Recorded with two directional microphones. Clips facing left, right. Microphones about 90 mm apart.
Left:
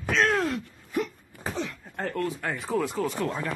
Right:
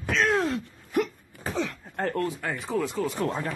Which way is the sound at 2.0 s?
45° right (ahead or behind).